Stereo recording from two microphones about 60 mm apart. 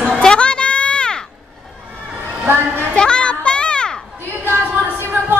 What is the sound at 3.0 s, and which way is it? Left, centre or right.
Children playing, centre.